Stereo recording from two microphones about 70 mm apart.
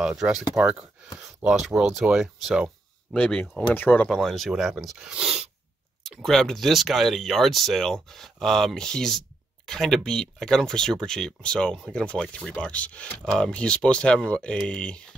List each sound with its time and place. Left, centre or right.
0.0 s speech: centre
0.6 s speech: centre
1.5 s speech: centre
3.2 s speech: centre
4.1 s speech: centre
6.0 s speech: centre